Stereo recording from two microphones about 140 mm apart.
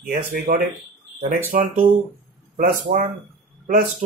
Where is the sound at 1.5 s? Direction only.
80° right.